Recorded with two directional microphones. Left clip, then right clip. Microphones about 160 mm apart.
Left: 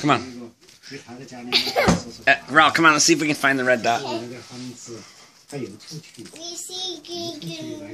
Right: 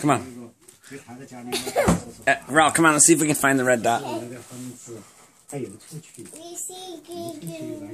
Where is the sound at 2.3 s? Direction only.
30° right (ahead or behind).